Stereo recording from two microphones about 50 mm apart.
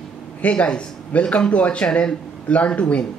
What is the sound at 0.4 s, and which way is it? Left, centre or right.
Speech, left.